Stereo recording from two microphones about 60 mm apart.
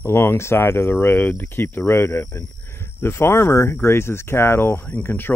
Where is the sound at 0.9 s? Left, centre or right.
Left.